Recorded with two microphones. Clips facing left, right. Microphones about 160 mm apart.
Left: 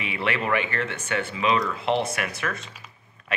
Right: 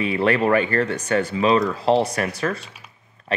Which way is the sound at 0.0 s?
40° right (ahead or behind).